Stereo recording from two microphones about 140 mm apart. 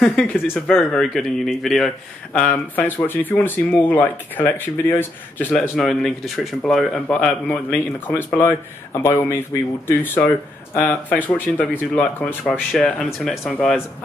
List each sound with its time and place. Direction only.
0.1 s a man's voice: 10° left (ahead or behind)
5.8 s a man's voice: 5° left (ahead or behind)